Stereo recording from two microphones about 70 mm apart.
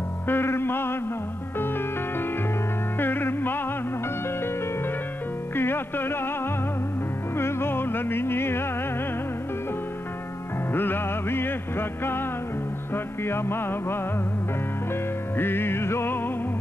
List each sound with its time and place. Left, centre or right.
0.3 s music: left
3.0 s music: left
5.6 s music: left
7.3 s music: left
10.7 s music: left
15.3 s music: left